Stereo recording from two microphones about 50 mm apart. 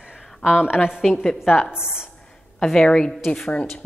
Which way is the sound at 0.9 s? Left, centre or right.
Centre.